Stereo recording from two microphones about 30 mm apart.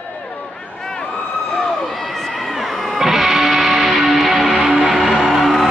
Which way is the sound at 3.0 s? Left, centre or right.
Centre.